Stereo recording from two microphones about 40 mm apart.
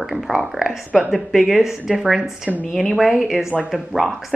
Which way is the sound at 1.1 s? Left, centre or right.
Centre.